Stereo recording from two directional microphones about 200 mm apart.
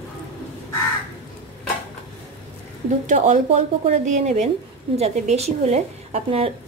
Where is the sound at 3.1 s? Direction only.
35° right (ahead or behind).